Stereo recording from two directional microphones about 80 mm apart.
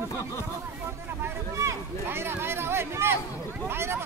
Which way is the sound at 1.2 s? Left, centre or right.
Right.